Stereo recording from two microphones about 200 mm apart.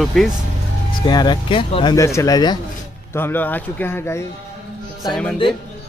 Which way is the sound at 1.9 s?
15° left (ahead or behind).